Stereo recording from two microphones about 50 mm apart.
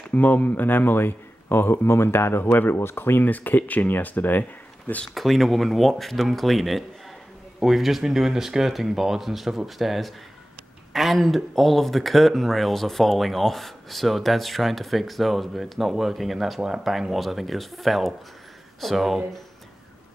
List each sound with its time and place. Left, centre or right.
0.1 s speech: left
5.1 s speech: centre